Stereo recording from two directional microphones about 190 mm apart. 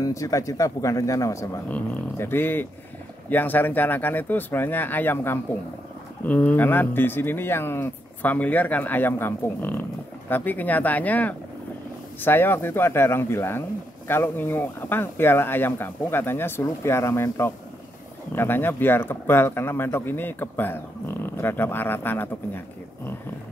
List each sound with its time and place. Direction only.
0.0 s speech: 15° left (ahead or behind)